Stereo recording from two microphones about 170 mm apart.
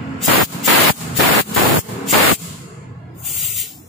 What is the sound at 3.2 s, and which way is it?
Spray, centre (ahead or behind).